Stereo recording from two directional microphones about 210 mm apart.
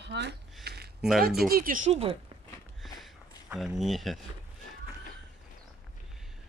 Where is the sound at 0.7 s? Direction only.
50° right (ahead or behind).